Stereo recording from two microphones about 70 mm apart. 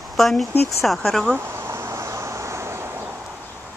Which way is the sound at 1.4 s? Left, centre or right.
Right.